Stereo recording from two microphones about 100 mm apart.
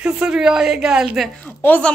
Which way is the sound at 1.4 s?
15° left (ahead or behind).